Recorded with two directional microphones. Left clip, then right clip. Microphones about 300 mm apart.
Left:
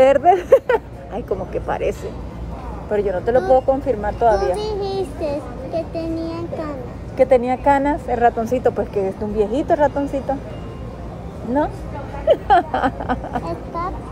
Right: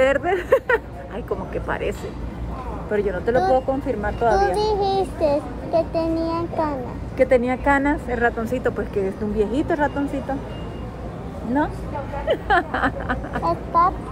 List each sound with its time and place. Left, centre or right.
0.0 s speech: centre
4.6 s a child's voice: centre
7.2 s speech: centre
12.3 s speech: centre
13.5 s a child's voice: centre